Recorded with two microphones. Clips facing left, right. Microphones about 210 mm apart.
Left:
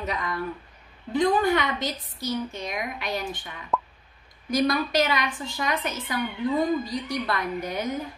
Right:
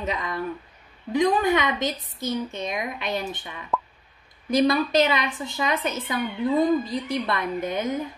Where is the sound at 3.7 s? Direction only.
Centre (ahead or behind).